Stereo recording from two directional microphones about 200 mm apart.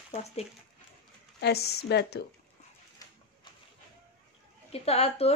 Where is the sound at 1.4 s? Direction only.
55° left (ahead or behind).